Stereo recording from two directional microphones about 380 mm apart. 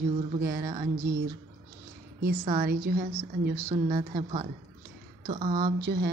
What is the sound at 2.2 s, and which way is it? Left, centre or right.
A woman's voice, right.